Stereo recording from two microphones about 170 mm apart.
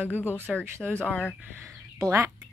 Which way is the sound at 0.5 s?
Centre (ahead or behind).